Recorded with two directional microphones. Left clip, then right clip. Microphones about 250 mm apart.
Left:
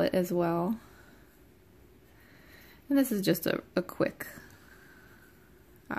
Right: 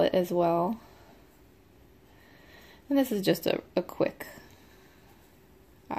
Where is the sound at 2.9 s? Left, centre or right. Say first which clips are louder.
Right 2 dB; left.